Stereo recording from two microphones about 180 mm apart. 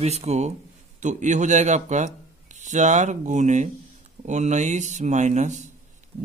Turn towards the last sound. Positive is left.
turn(degrees=-40)  # may be behind; listen again after turning